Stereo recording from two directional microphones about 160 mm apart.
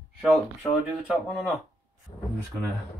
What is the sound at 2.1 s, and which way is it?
Speech, 25° left (ahead or behind).